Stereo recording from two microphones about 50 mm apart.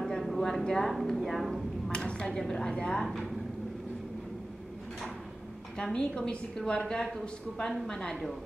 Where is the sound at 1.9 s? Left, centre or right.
Centre.